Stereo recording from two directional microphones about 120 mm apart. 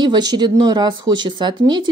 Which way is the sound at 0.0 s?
35° right (ahead or behind).